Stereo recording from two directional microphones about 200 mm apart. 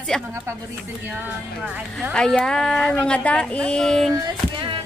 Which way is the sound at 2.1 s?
5° left (ahead or behind).